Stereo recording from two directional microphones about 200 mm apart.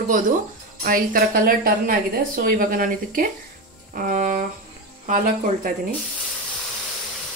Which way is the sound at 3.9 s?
40° right (ahead or behind).